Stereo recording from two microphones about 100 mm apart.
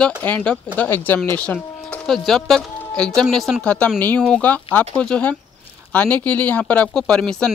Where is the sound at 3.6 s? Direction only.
10° left (ahead or behind).